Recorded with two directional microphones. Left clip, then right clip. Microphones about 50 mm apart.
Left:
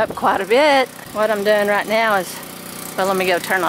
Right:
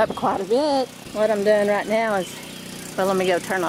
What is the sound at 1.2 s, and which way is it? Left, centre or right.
Speech, centre.